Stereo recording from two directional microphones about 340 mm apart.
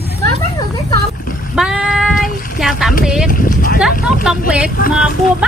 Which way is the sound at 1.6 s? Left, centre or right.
Centre.